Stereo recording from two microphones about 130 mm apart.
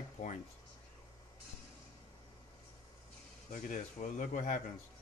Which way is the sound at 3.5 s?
85° left.